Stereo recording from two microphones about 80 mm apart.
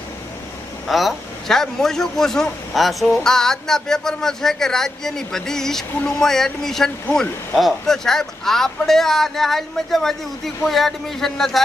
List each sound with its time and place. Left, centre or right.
0.8 s a man's voice: centre